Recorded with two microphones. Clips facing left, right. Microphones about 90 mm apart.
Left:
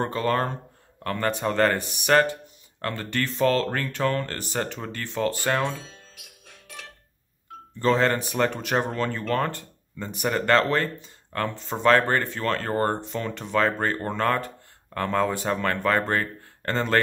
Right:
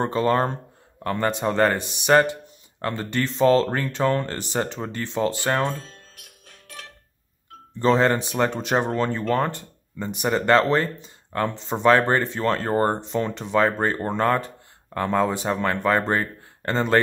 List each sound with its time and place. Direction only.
0.0 s speech: 20° right (ahead or behind)
5.5 s music: centre (ahead or behind)
7.8 s speech: 20° right (ahead or behind)